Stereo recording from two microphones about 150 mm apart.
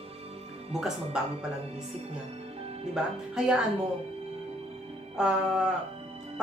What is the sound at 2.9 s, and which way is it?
Speech, 5° right (ahead or behind).